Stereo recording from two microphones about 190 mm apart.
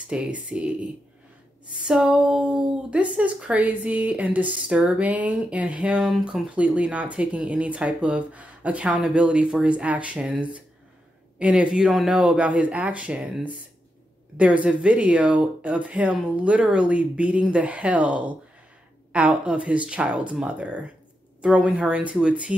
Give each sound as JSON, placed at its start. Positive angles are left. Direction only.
{"t": 0.1, "sound": "speech", "side_deg": -5}
{"t": 1.8, "sound": "speech", "side_deg": -5}